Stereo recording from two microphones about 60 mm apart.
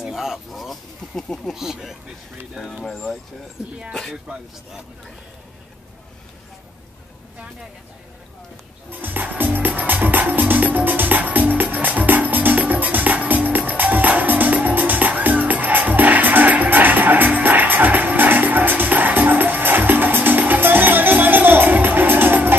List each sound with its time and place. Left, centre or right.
0.0 s speech: centre
1.5 s speech: centre
8.9 s music: right